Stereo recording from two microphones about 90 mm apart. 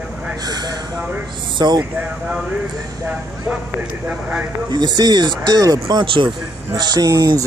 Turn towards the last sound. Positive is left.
turn(degrees=-40)  # may be behind; listen again after turning